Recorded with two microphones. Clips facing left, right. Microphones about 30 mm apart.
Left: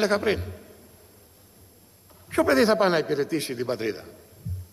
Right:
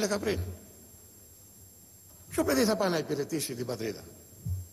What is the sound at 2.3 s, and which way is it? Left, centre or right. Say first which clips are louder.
A man's voice: left 7 dB; left.